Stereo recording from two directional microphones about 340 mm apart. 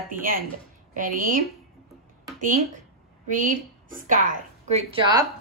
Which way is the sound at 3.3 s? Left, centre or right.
Right.